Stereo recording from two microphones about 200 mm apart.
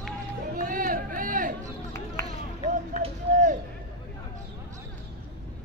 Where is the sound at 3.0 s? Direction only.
40° right (ahead or behind).